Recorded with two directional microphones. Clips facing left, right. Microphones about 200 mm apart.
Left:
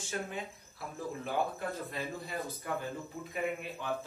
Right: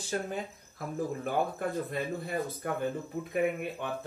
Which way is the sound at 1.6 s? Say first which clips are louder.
Right 4 dB; 55° right (ahead or behind).